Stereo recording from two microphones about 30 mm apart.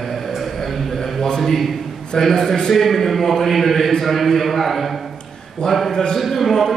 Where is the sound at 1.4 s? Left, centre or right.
Centre.